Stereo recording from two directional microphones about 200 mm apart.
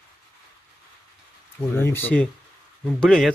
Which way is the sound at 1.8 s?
10° left (ahead or behind).